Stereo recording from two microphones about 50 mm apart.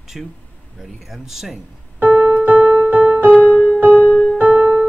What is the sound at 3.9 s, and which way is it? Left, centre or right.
Music, left.